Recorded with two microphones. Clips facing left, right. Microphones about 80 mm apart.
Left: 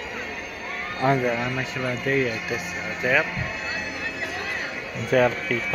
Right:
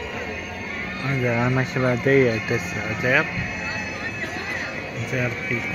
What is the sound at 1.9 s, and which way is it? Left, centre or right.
Speech, right.